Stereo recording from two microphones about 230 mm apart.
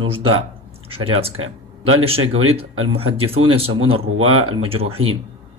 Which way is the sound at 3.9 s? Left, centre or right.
Right.